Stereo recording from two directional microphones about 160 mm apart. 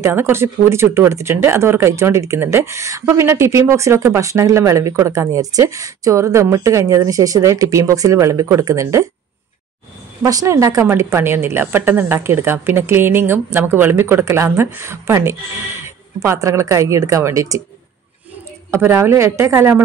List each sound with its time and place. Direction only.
0.0 s speech: 15° right (ahead or behind)
10.2 s a woman's voice: 20° right (ahead or behind)
18.7 s speech: 15° right (ahead or behind)